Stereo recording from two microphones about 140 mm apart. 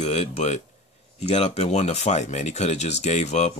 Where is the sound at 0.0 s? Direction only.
50° left (ahead or behind).